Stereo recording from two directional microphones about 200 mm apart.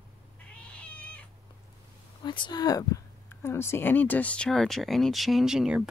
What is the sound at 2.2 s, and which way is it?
Speech, 20° left (ahead or behind).